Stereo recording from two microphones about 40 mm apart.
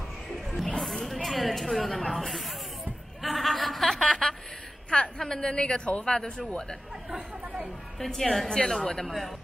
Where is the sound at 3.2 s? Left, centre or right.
Centre.